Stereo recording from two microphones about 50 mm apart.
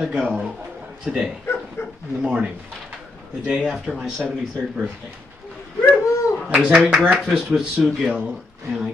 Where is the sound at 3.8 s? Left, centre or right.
Centre.